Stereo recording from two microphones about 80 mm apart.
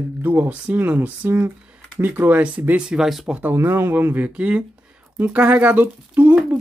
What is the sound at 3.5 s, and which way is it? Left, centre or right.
Speech, right.